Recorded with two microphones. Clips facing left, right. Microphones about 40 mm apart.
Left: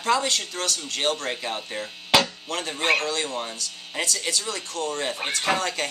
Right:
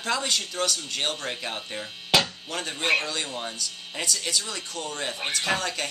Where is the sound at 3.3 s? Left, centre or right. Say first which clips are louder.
Left 2 dB; centre.